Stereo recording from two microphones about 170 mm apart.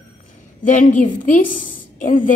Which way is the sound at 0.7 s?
50° left (ahead or behind).